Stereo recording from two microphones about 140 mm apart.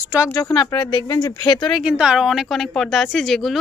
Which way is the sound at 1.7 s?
5° right (ahead or behind).